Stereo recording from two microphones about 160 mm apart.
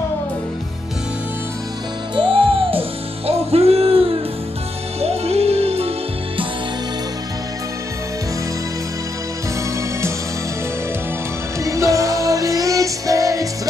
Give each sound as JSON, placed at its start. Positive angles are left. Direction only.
{"t": 2.1, "sound": "music", "side_deg": -35}
{"t": 11.6, "sound": "music", "side_deg": -20}